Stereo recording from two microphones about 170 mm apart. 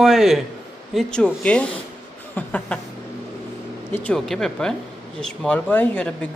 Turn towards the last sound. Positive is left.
turn(degrees=5)  # may be behind; listen again after turning